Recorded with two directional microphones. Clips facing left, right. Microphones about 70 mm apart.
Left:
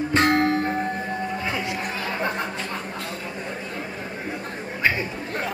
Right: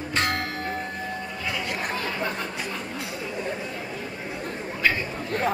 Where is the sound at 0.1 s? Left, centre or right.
Left.